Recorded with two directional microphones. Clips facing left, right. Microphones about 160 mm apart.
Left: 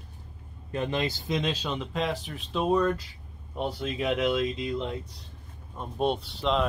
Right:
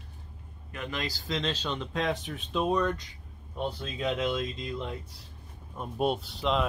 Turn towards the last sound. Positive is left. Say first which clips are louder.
# left 2 dB
turn(degrees=0)  # may be behind; listen again after turning